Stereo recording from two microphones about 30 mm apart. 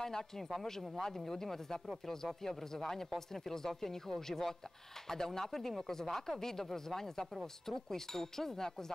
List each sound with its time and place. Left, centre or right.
0.0 s speech: centre